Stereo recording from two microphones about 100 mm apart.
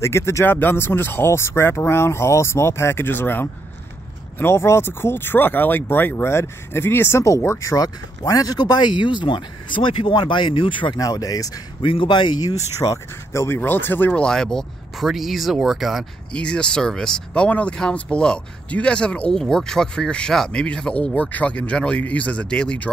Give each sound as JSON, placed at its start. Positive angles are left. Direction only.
{"t": 0.0, "sound": "speech", "side_deg": 30}
{"t": 11.0, "sound": "speech", "side_deg": 35}
{"t": 11.8, "sound": "a man's voice", "side_deg": 60}
{"t": 12.8, "sound": "speech", "side_deg": 30}
{"t": 14.2, "sound": "speech", "side_deg": 5}
{"t": 16.3, "sound": "speech", "side_deg": 10}